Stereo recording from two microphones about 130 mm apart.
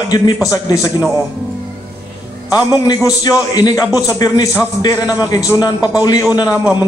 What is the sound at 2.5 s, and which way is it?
A man's voice, 30° left (ahead or behind).